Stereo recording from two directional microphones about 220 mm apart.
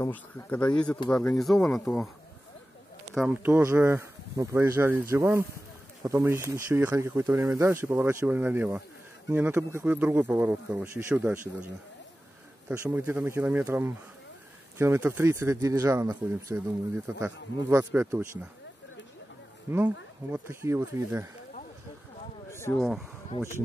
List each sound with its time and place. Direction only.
0.0 s speech: 5° left (ahead or behind)
3.2 s speech: 10° right (ahead or behind)
12.6 s speech: 10° right (ahead or behind)
20.2 s speech: 10° right (ahead or behind)
22.5 s a sound: 10° left (ahead or behind)
22.8 s speech: centre (ahead or behind)
23.3 s speech: 25° left (ahead or behind)